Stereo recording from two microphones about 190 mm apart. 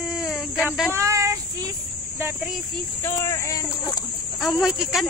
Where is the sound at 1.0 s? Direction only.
15° right (ahead or behind).